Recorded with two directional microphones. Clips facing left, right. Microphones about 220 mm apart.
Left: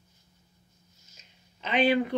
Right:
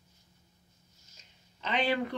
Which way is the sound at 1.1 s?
20° left (ahead or behind).